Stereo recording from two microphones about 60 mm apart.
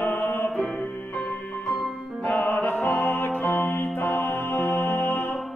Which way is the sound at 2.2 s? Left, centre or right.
Left.